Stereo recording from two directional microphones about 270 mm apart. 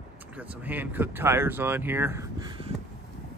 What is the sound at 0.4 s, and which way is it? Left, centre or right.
Speech, centre.